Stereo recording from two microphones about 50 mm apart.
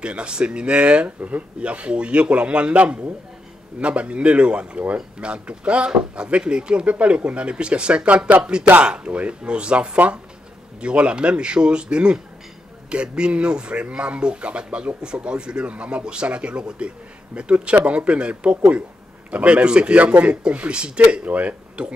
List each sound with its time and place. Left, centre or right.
0.0 s speech: right